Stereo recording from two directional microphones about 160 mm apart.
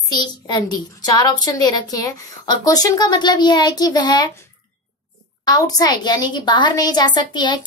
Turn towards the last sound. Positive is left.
turn(degrees=25)  # may be behind; listen again after turning